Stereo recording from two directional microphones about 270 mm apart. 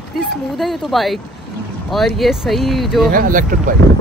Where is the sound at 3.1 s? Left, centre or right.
Right.